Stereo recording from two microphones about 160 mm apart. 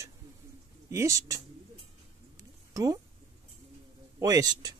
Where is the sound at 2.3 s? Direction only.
20° right (ahead or behind).